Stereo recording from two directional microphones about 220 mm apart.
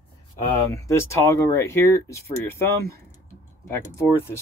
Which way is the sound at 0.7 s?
15° left (ahead or behind).